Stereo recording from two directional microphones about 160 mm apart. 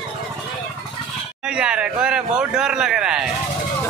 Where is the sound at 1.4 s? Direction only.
5° right (ahead or behind).